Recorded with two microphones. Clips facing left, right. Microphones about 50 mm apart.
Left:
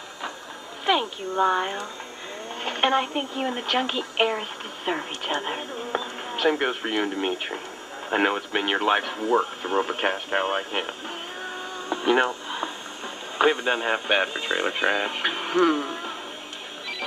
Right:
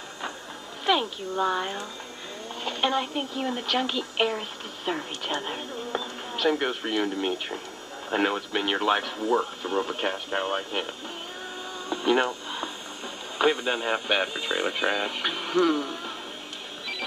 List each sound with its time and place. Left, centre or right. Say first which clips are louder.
0.8 s speech: left 1 dB; centre
2.6 s speech: left 4 dB; left
11.9 s radio: left 2 dB; centre
13.4 s speech: left 3 dB; centre